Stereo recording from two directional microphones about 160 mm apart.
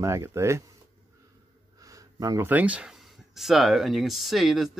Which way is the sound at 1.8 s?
20° right (ahead or behind).